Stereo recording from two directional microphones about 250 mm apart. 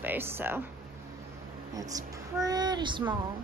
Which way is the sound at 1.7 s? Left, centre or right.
Centre.